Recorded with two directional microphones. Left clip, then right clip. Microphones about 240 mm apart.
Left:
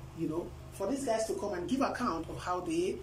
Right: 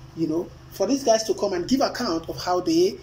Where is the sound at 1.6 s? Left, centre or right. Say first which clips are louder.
Right 9 dB; right.